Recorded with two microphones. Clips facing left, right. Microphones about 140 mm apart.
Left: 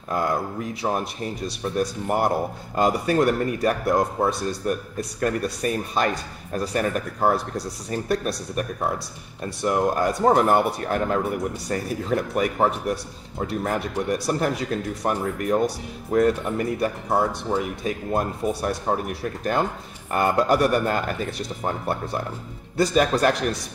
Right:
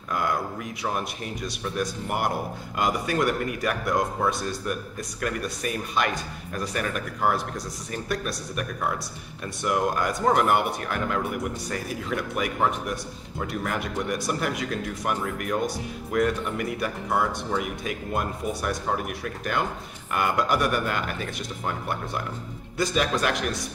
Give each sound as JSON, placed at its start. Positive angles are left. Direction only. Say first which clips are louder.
{"t": 0.1, "sound": "speech", "louder": "left 3 dB", "side_deg": 30}